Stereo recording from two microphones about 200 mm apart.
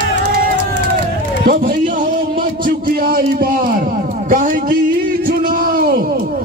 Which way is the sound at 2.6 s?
50° right (ahead or behind).